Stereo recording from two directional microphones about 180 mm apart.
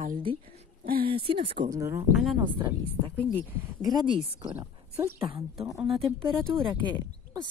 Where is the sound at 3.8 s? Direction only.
25° right (ahead or behind).